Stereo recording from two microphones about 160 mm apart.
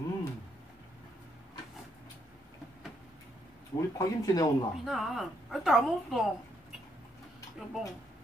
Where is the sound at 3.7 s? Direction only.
20° left (ahead or behind).